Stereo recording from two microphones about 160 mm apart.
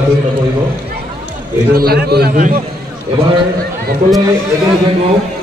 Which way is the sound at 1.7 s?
70° right (ahead or behind).